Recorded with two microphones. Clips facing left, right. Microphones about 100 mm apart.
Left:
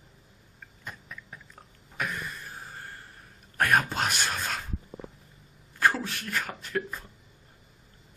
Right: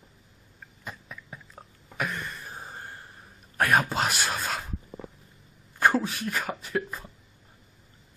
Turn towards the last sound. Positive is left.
turn(degrees=-5)  # may be behind; listen again after turning